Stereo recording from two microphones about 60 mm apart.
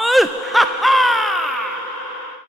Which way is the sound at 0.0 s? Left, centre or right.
Centre.